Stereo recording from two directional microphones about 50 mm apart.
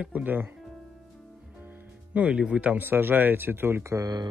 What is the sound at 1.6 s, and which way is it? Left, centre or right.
Music, right.